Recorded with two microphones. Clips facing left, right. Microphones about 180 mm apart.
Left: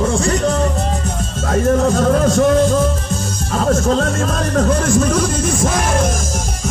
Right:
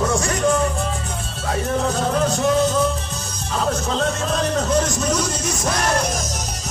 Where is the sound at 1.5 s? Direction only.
45° left (ahead or behind).